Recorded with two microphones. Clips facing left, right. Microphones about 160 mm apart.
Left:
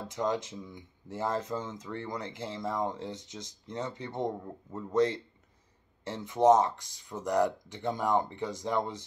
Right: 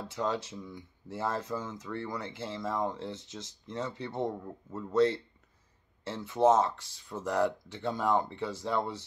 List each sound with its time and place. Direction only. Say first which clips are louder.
0.1 s speech: left 2 dB; 15° left (ahead or behind)